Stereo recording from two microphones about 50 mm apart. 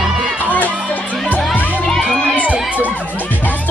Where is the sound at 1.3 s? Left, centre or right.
Left.